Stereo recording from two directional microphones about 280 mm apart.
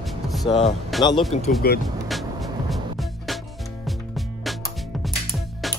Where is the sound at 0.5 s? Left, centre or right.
Left.